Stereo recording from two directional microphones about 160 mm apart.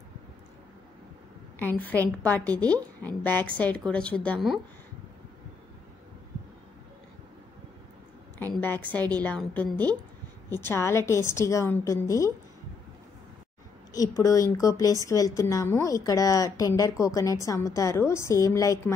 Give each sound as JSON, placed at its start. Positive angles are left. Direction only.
{"t": 1.6, "sound": "a woman's voice", "side_deg": 10}
{"t": 8.5, "sound": "a woman's voice", "side_deg": 10}
{"t": 13.9, "sound": "a woman's voice", "side_deg": 20}